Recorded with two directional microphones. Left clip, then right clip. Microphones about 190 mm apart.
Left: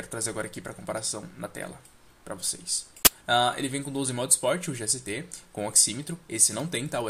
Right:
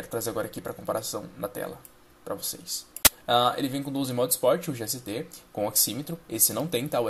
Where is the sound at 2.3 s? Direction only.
Centre (ahead or behind).